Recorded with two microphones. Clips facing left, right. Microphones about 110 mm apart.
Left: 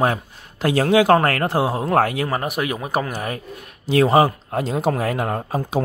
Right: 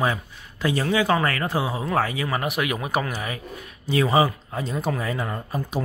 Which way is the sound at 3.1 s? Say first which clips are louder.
Left 4 dB; 50° left (ahead or behind).